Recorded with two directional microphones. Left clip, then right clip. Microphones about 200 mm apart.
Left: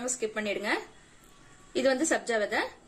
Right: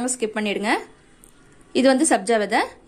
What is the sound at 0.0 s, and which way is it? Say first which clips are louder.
A woman's voice: right 7 dB; 35° right (ahead or behind).